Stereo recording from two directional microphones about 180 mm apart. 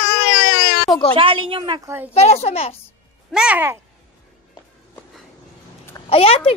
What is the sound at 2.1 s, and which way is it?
Speech, 35° left (ahead or behind).